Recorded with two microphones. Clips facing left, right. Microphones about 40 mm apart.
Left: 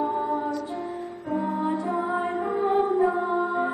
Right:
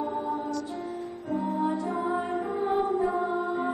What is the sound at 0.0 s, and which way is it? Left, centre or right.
Music, centre.